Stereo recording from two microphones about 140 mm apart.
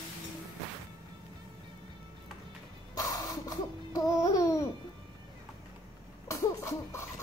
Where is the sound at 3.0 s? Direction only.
30° left (ahead or behind).